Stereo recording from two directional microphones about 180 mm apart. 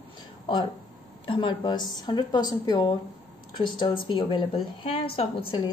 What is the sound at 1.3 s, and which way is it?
Speech, 30° left (ahead or behind).